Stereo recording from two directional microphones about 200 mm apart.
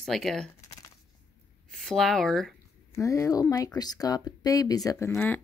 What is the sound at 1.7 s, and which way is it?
Speech, 5° left (ahead or behind).